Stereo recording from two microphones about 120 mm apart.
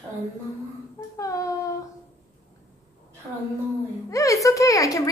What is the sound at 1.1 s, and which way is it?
Child singing, 25° left (ahead or behind).